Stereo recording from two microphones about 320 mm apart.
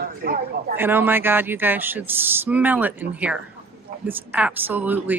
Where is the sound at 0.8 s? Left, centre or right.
Centre.